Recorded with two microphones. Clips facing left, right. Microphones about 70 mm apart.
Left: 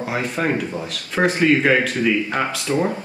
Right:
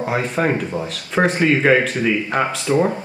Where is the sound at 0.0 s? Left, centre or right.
Centre.